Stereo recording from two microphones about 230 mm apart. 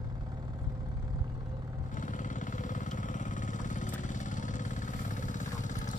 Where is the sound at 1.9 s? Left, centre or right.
Left.